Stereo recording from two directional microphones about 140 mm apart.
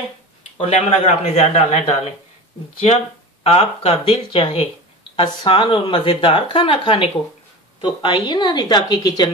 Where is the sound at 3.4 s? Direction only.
45° left (ahead or behind).